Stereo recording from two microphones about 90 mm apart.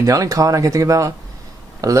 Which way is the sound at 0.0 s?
40° right (ahead or behind).